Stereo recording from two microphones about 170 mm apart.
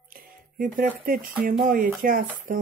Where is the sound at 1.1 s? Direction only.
55° right (ahead or behind).